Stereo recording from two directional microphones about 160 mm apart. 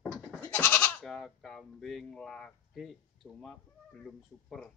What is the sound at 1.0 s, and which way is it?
Speech, centre (ahead or behind).